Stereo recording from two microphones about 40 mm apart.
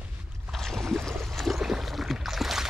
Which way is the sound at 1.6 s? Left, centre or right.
Centre.